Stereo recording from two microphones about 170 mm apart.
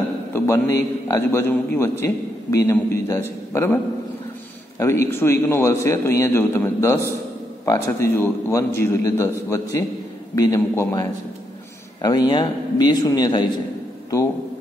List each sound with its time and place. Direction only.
0.3 s a man's voice: 15° left (ahead or behind)